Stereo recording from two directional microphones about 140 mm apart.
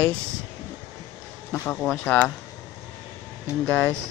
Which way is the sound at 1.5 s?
15° left (ahead or behind).